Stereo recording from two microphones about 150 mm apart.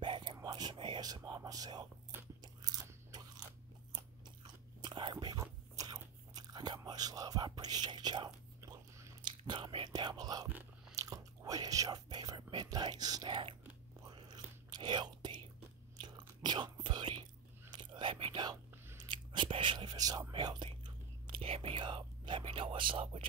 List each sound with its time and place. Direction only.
0.0 s whispering: 30° right (ahead or behind)
2.4 s crunch: 25° right (ahead or behind)
4.8 s biting: 30° right (ahead or behind)
9.2 s whispering: 35° right (ahead or behind)
14.0 s biting: 30° right (ahead or behind)
16.0 s whispering: 30° right (ahead or behind)